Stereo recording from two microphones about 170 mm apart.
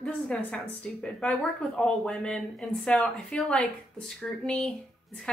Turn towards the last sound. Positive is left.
turn(degrees=5)  # may be behind; listen again after turning